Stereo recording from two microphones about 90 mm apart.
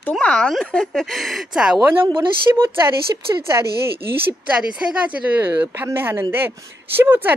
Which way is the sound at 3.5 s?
45° right (ahead or behind).